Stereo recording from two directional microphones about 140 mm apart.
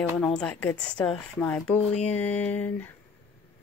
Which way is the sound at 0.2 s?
5° left (ahead or behind).